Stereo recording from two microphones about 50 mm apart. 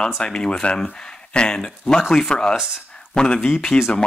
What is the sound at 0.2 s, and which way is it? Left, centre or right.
Speech, centre.